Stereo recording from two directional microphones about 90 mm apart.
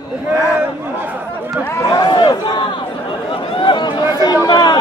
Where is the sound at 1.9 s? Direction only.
40° left (ahead or behind).